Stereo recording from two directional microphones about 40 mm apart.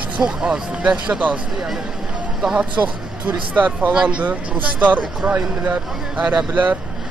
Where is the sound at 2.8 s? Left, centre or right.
Right.